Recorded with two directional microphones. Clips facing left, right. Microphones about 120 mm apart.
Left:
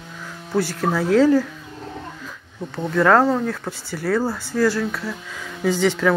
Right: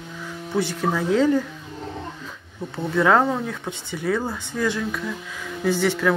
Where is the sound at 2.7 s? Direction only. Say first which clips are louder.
Left 2 dB; 10° right (ahead or behind).